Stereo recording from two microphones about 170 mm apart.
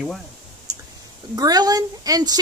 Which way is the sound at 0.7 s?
20° right (ahead or behind).